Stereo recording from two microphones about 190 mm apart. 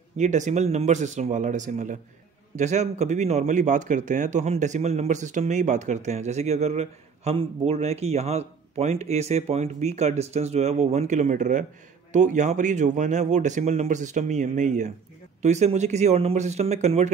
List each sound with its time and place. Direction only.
0.2 s speech: 40° right (ahead or behind)